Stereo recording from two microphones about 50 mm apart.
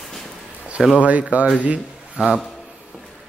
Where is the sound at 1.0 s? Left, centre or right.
Right.